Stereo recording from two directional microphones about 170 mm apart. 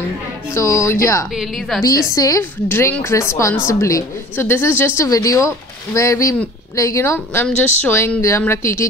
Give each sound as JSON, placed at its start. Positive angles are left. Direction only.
{"t": 0.6, "sound": "a woman's voice", "side_deg": 15}
{"t": 1.3, "sound": "a woman's voice", "side_deg": 0}
{"t": 1.8, "sound": "a woman's voice", "side_deg": 20}